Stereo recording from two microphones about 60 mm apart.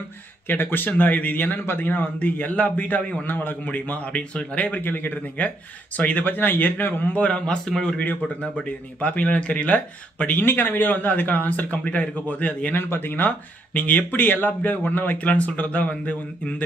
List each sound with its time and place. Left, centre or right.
0.5 s a man's voice: left
7.6 s a man's voice: centre
8.4 s a man's voice: left
10.4 s a man's voice: left